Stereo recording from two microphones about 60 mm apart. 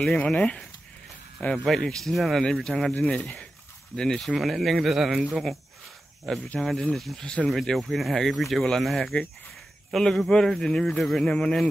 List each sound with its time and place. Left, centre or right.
0.0 s speech: centre
1.4 s speech: left
1.9 s speech: centre